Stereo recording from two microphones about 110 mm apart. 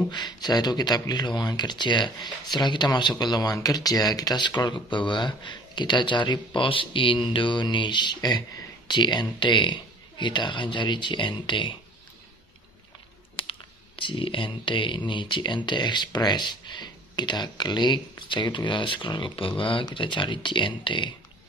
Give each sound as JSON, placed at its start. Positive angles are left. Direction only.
{"t": 0.1, "sound": "speech", "side_deg": 40}
{"t": 13.4, "sound": "speech", "side_deg": 50}